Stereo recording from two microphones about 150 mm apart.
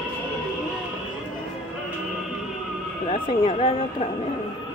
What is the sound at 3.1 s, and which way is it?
Speech, 40° left (ahead or behind).